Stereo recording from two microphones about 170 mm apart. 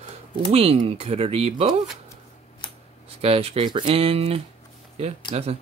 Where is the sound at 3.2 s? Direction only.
35° right (ahead or behind).